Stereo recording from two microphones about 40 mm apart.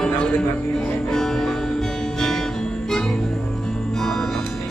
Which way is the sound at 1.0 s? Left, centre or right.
Centre.